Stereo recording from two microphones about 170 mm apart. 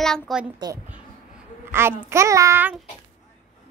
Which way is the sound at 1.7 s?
15° right (ahead or behind).